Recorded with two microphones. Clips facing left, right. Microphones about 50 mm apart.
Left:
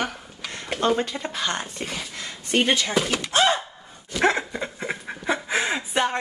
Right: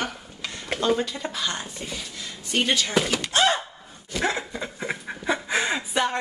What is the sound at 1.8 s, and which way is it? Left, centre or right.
Speech, left.